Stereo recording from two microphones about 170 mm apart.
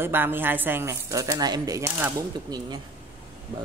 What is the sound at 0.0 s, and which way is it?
Speech, 10° right (ahead or behind).